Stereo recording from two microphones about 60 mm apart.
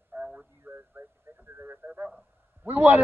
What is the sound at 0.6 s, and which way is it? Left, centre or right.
Radio, right.